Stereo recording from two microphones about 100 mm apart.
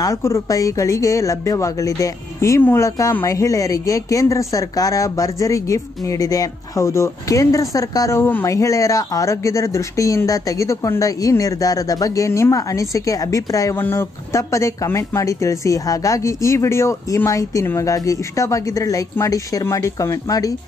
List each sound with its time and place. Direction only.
0.0 s speech: 30° left (ahead or behind)
8.2 s speech: 20° left (ahead or behind)
8.5 s speech: 35° left (ahead or behind)